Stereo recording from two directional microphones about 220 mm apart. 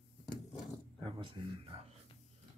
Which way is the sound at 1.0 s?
25° right (ahead or behind).